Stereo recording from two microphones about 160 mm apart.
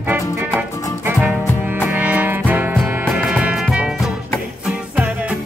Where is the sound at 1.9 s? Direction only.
10° right (ahead or behind).